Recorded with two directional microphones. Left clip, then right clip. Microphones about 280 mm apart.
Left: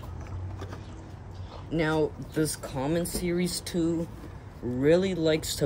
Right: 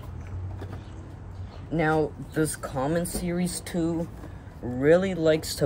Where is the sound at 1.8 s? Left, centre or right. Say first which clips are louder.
Right 2 dB; centre.